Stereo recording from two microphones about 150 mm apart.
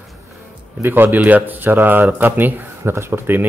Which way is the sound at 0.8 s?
15° right (ahead or behind).